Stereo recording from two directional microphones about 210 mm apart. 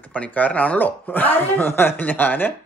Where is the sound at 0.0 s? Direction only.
5° left (ahead or behind).